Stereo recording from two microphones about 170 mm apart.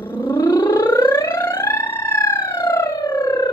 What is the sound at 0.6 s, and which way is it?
Alarm, 10° left (ahead or behind).